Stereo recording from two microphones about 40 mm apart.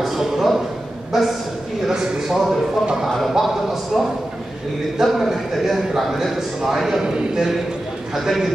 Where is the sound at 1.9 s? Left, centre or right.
Centre.